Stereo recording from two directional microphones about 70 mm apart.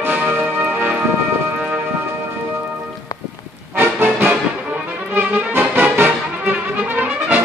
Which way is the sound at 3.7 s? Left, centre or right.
Right.